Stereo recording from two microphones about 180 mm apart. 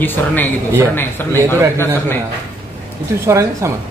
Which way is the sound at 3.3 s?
15° right (ahead or behind).